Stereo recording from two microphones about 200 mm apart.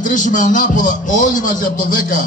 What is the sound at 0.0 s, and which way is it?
A man's voice, 40° left (ahead or behind).